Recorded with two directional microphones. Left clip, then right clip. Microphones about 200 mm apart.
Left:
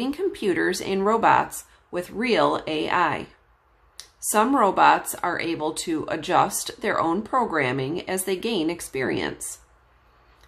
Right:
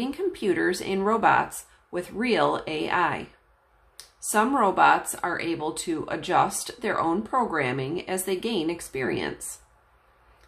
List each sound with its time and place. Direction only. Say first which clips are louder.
0.0 s speech: left 2 dB; 15° left (ahead or behind)